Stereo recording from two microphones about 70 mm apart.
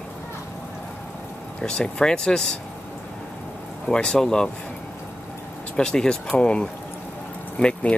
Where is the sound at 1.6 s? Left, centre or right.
Centre.